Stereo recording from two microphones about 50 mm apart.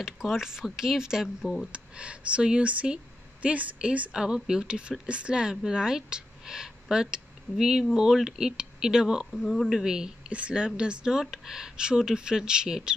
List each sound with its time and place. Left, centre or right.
0.0 s speech: centre
1.7 s speech: right
4.1 s speech: centre
9.3 s speech: centre
9.7 s speech: centre